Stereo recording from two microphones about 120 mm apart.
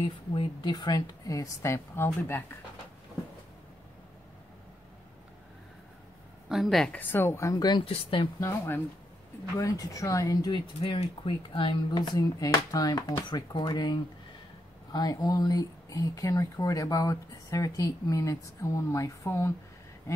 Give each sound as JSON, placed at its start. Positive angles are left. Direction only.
{"t": 0.0, "sound": "speech", "side_deg": 45}
{"t": 6.5, "sound": "a woman's voice", "side_deg": 0}
{"t": 7.0, "sound": "speech", "side_deg": 20}
{"t": 7.8, "sound": "speech", "side_deg": 50}
{"t": 8.4, "sound": "speech", "side_deg": 20}
{"t": 10.5, "sound": "speech", "side_deg": 40}